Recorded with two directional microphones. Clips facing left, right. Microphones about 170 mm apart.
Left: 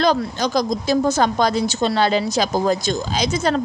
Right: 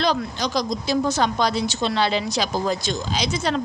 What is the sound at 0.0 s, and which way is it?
A woman's voice, 45° left (ahead or behind).